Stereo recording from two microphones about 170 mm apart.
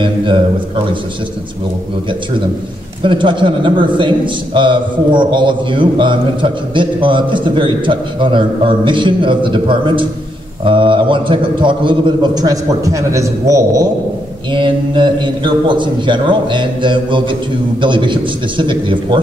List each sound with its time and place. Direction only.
0.0 s a man's voice: 30° right (ahead or behind)
3.0 s a man's voice: 30° right (ahead or behind)
14.5 s a man's voice: 30° right (ahead or behind)